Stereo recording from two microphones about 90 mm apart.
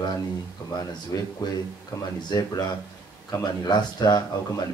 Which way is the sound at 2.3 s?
50° left (ahead or behind).